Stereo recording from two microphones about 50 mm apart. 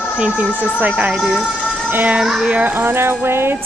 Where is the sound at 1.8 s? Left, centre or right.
Right.